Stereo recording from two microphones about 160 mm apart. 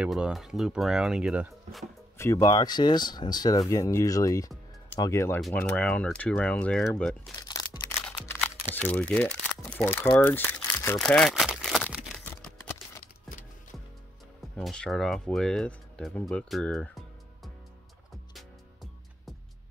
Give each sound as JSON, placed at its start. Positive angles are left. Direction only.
{"t": 0.0, "sound": "speech", "side_deg": -5}
{"t": 2.1, "sound": "speech", "side_deg": 20}
{"t": 7.4, "sound": "a sound", "side_deg": 25}
{"t": 8.1, "sound": "music", "side_deg": 15}
{"t": 8.7, "sound": "speech", "side_deg": 10}
{"t": 11.0, "sound": "crumpling", "side_deg": 5}
{"t": 14.5, "sound": "speech", "side_deg": 5}
{"t": 18.3, "sound": "music", "side_deg": 0}